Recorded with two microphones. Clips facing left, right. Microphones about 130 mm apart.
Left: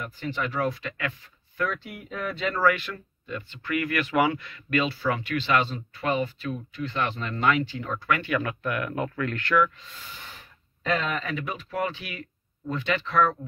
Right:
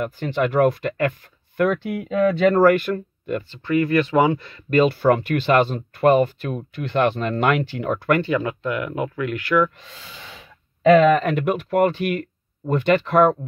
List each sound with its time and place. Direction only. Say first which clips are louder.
0.0 s speech: right 9 dB; 65° right (ahead or behind)
1.6 s speech: right 10 dB; 70° right (ahead or behind); by 3.4 s 55° right (ahead or behind)
3.4 s speech: right 7 dB; 30° right (ahead or behind)
4.8 s speech: right 10 dB; 55° right (ahead or behind)
8.2 s speech: right 6 dB; 25° right (ahead or behind)
10.9 s speech: right 14 dB; 70° right (ahead or behind)